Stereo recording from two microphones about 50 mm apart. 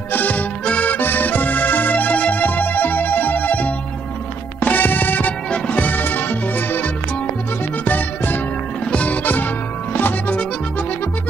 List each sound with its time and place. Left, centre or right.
0.1 s accordion: left
4.6 s music: left